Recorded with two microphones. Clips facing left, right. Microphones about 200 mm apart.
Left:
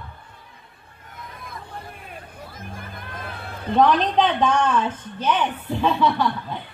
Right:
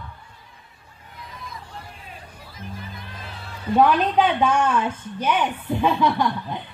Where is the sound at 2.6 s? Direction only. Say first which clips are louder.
Right 3 dB; 50° left (ahead or behind).